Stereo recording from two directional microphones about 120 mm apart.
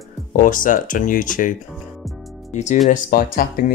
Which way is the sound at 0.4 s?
90° left.